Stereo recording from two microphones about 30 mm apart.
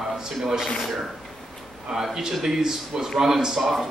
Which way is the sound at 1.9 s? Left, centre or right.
Centre.